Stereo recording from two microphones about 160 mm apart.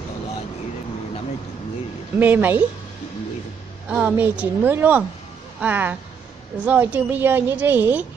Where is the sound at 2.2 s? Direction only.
10° right (ahead or behind).